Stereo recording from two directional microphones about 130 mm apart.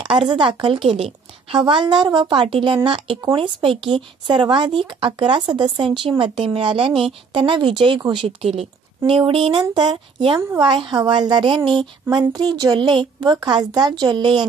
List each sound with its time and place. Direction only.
0.0 s a woman's voice: 35° right (ahead or behind)
1.6 s speech: 40° right (ahead or behind)